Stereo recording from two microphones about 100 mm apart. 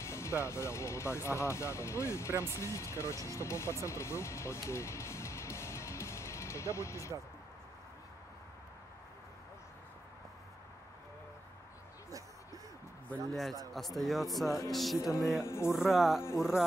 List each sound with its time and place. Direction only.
0.0 s speech: 30° left (ahead or behind)
13.3 s speech: centre (ahead or behind)
15.0 s speech: 35° left (ahead or behind)
15.7 s speech: 5° right (ahead or behind)